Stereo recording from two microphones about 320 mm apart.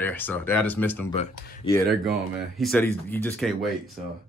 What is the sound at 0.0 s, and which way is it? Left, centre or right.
Speech, centre.